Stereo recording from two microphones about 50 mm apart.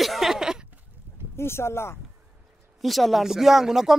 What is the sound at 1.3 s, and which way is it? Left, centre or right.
Speech, left.